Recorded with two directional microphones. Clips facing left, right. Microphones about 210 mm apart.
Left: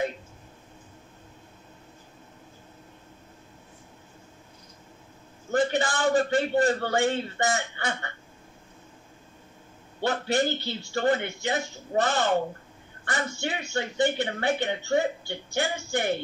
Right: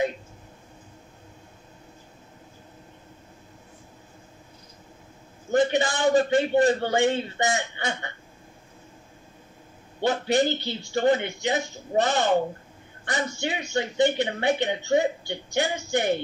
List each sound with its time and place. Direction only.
5.5 s a woman's voice: 20° right (ahead or behind)
10.0 s a man's voice: 15° right (ahead or behind)